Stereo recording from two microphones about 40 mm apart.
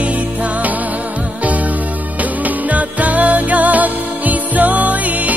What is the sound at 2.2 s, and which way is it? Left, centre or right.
Music, right.